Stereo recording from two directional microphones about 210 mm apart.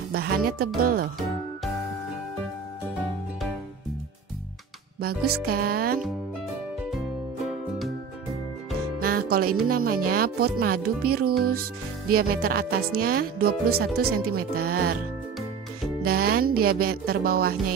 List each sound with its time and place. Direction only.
0.1 s speech: 45° right (ahead or behind)
5.0 s speech: 45° right (ahead or behind)
9.0 s music: 45° right (ahead or behind)
9.7 s speech: 45° right (ahead or behind)
16.1 s speech: 45° right (ahead or behind)